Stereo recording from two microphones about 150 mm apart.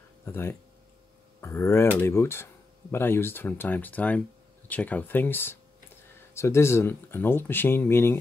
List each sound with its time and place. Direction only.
0.2 s speech: 15° left (ahead or behind)